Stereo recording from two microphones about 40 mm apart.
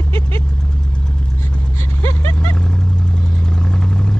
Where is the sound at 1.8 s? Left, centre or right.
Left.